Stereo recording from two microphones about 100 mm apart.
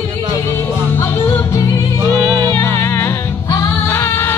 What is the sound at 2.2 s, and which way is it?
Music, 40° right (ahead or behind).